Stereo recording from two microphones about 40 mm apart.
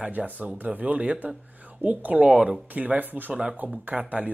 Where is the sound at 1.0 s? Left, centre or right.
Right.